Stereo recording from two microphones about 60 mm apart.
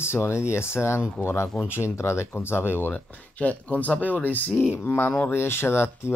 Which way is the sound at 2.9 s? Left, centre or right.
Left.